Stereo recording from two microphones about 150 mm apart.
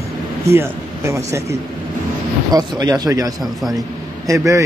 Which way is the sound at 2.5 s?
25° right (ahead or behind).